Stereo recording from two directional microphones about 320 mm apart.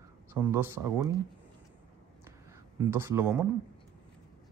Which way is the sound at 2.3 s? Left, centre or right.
Centre.